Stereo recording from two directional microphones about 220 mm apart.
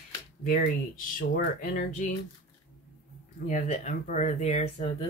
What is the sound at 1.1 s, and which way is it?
Speech, 35° left (ahead or behind).